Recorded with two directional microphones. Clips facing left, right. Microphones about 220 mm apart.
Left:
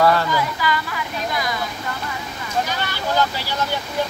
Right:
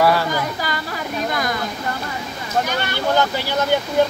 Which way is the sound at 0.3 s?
45° right (ahead or behind).